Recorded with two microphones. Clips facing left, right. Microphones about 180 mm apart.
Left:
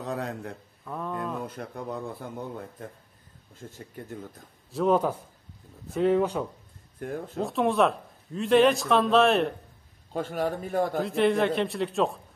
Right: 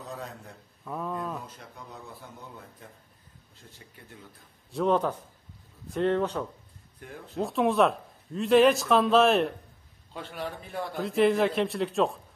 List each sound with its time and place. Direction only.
0.1 s a man's voice: 70° left (ahead or behind)
0.8 s speech: centre (ahead or behind)
1.4 s a man's voice: 60° left (ahead or behind)
4.6 s speech: 5° left (ahead or behind)
7.0 s speech: 50° left (ahead or behind)
7.3 s speech: centre (ahead or behind)
10.1 s a man's voice: 45° left (ahead or behind)
11.0 s speech: centre (ahead or behind)